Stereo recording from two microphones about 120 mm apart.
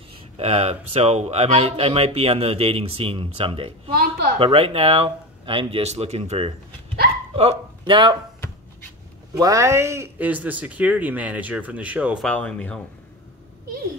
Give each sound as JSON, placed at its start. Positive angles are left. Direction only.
{"t": 0.4, "sound": "speech", "side_deg": -55}
{"t": 7.8, "sound": "speech", "side_deg": -40}
{"t": 9.4, "sound": "speech", "side_deg": -30}
{"t": 12.3, "sound": "speech", "side_deg": 10}